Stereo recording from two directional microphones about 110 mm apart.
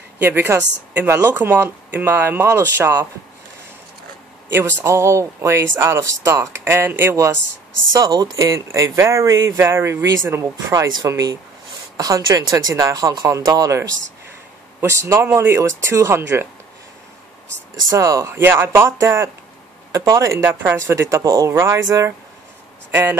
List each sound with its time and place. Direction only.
0.2 s speech: 20° right (ahead or behind)
4.5 s speech: 20° right (ahead or behind)
7.9 s speech: 35° right (ahead or behind)
17.5 s speech: 30° right (ahead or behind)